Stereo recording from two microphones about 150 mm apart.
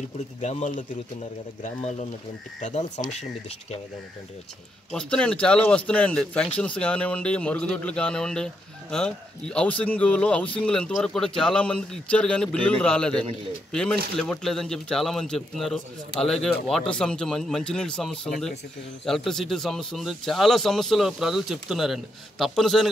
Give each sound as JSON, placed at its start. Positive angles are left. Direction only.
{"t": 0.4, "sound": "speech", "side_deg": 50}
{"t": 3.1, "sound": "speech", "side_deg": 45}
{"t": 4.9, "sound": "speech", "side_deg": 5}